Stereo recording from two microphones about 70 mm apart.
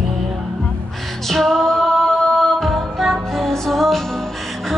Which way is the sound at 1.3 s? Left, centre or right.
Centre.